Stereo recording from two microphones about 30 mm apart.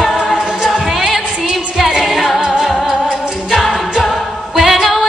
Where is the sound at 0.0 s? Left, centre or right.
Centre.